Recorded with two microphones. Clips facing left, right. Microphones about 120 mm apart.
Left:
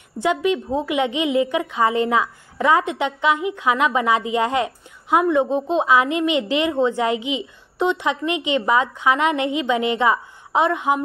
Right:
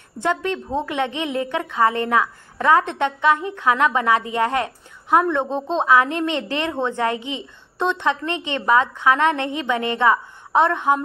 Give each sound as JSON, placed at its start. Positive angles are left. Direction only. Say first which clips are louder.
{"t": 0.2, "sound": "a woman's voice", "louder": "left 3 dB", "side_deg": 15}